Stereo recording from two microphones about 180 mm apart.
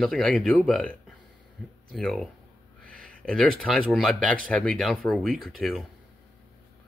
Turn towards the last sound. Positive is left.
turn(degrees=0)  # may be behind; listen again after turning